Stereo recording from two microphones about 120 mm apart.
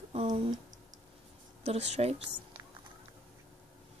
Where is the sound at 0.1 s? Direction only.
55° right (ahead or behind).